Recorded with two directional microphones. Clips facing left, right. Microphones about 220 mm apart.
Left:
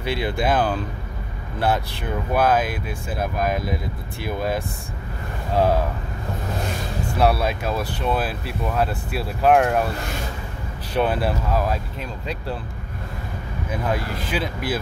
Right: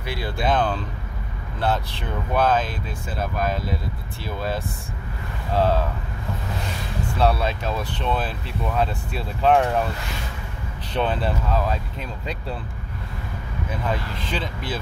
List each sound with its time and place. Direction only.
0.0 s speech: 25° left (ahead or behind)
0.5 s speech: 10° left (ahead or behind)
7.2 s speech: 10° left (ahead or behind)
10.9 s speech: 10° left (ahead or behind)
14.2 s speech: 10° left (ahead or behind)